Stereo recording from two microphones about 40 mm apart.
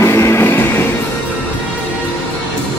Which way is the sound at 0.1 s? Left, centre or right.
Left.